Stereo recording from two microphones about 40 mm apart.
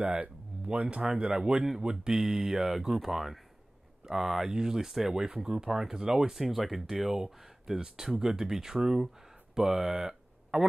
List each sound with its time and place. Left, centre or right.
0.0 s speech: right
0.5 s a sound: right
0.8 s speech: right
2.0 s speech: centre
5.1 s speech: centre